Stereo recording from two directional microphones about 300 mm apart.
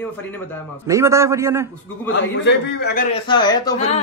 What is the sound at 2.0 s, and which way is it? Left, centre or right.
A man's voice, left.